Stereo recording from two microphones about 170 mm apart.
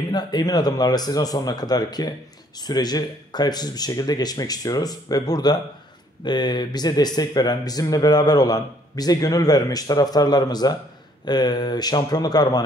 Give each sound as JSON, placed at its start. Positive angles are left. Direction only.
{"t": 0.1, "sound": "speech", "side_deg": 25}